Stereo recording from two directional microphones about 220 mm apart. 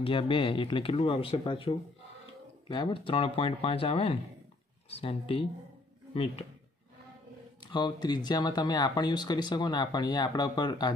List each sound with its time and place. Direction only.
0.0 s speech: 25° left (ahead or behind)
7.6 s speech: 20° left (ahead or behind)